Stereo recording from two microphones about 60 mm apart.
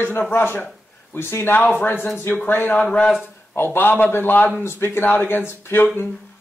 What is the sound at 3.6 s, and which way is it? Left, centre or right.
A man's voice, left.